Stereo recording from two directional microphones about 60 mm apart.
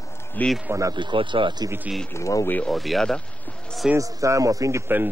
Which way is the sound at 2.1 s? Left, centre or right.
Left.